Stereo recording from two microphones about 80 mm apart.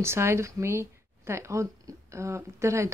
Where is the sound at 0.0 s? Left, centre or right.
Right.